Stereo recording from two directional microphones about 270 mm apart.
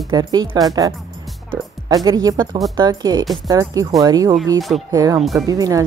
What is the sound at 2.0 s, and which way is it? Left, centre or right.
Speech, centre.